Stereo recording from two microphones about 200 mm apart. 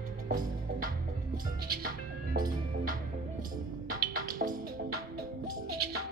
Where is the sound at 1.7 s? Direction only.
45° right (ahead or behind).